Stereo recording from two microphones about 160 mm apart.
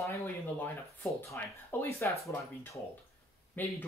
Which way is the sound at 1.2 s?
15° left (ahead or behind).